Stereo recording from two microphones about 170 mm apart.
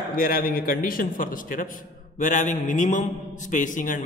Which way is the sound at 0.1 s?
60° left (ahead or behind).